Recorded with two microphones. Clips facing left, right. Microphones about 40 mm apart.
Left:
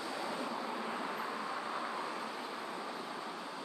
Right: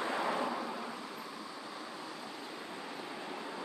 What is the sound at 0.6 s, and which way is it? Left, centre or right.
Vehicle, centre.